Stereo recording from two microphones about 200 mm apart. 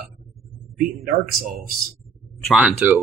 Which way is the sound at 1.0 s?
50° right (ahead or behind).